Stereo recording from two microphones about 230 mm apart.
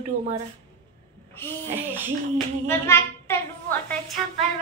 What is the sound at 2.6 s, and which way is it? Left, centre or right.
A child's voice, centre.